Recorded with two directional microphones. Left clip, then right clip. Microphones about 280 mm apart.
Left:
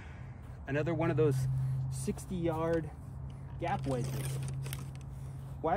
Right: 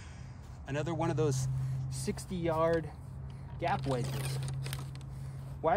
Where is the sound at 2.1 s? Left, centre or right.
Right.